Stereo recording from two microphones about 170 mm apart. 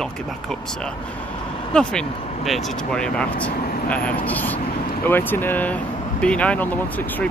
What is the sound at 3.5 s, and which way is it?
Vehicle, 65° left (ahead or behind).